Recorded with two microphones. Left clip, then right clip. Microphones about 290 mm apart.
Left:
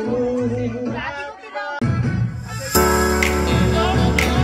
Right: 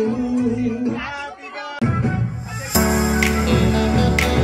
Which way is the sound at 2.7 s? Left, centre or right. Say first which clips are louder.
Left 3 dB; centre.